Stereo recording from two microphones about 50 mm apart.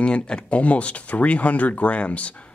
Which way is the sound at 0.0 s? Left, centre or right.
Left.